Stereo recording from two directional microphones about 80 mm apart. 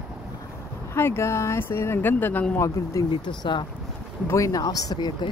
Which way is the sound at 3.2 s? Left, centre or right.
Left.